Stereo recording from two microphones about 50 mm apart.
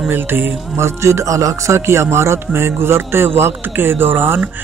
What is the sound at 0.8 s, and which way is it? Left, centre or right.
Speech, right.